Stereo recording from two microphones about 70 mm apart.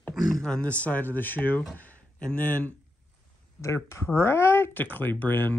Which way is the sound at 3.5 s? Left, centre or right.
Left.